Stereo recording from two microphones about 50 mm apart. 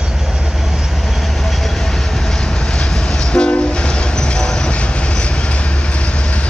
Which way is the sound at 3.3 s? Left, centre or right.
Left.